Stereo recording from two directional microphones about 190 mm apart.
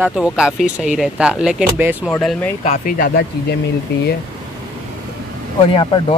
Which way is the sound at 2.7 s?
50° left (ahead or behind).